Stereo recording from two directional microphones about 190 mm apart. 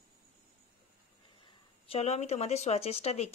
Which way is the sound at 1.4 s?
30° left (ahead or behind).